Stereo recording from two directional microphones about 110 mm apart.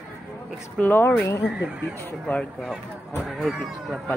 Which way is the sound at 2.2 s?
10° left (ahead or behind).